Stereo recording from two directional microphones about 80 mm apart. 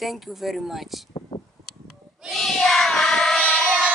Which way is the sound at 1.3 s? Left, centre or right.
Left.